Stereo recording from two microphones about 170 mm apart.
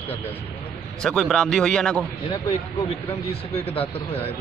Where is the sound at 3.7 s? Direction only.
35° left (ahead or behind).